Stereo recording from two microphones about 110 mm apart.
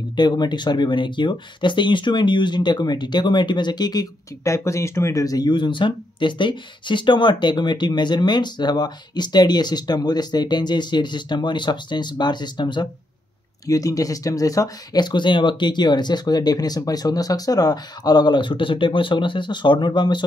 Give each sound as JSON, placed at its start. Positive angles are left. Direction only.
{"t": 0.1, "sound": "speech", "side_deg": 40}
{"t": 13.7, "sound": "speech", "side_deg": 30}